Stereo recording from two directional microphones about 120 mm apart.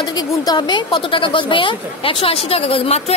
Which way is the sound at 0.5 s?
40° left (ahead or behind).